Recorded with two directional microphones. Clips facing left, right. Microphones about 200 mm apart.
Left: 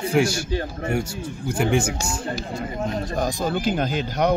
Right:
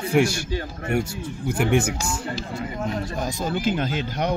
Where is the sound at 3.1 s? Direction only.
40° left (ahead or behind).